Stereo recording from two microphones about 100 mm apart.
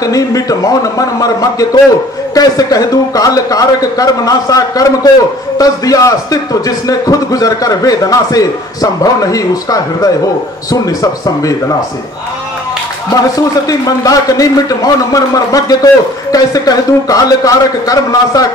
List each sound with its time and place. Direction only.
0.0 s a man's voice: 35° left (ahead or behind)
13.1 s a man's voice: 35° left (ahead or behind)